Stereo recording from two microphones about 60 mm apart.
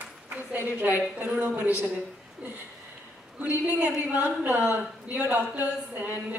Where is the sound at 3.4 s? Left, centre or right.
Right.